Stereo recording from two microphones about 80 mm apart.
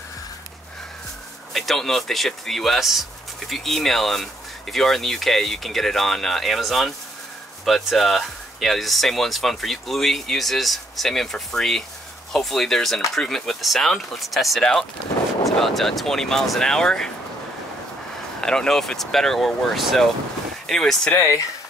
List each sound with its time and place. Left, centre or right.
1.5 s speech: centre
18.4 s speech: centre
21.1 s speech: left